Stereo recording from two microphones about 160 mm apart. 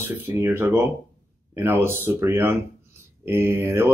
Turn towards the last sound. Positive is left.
turn(degrees=-15)  # may be behind; listen again after turning